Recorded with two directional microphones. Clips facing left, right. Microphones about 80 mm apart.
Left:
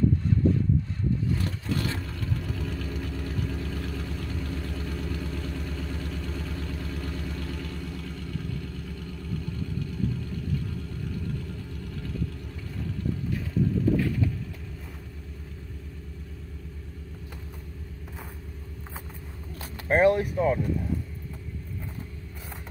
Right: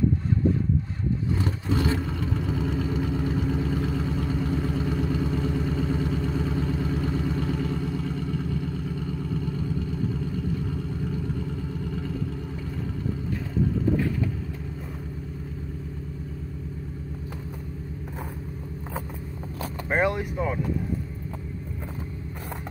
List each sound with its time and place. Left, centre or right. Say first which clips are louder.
1.3 s vehicle: right 3 dB; right